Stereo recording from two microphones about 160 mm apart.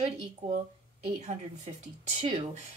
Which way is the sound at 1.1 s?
45° right (ahead or behind).